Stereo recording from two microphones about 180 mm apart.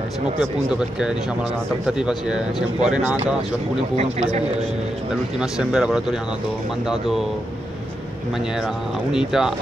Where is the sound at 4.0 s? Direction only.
35° right (ahead or behind).